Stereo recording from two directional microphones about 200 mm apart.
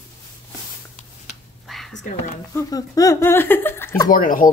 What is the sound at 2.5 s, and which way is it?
Speech, 15° left (ahead or behind).